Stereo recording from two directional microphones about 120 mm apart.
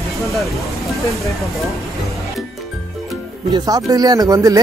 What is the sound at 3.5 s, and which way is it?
Speech, 30° right (ahead or behind).